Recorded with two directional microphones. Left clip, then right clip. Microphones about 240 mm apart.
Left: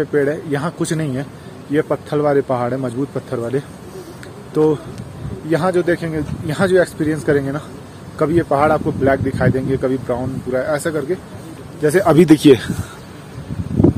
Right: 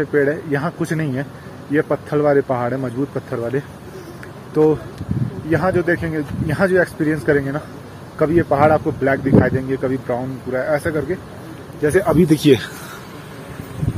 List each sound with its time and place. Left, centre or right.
0.0 s speech: centre
5.5 s speech: centre
11.9 s speech: left